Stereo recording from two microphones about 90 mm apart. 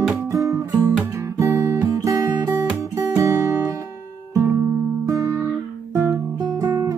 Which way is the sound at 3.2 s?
35° right (ahead or behind).